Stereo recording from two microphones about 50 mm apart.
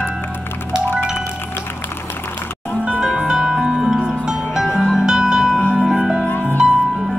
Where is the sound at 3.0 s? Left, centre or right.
Centre.